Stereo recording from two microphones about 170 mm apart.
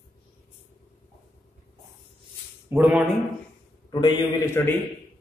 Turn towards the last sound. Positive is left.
turn(degrees=15)  # may be behind; listen again after turning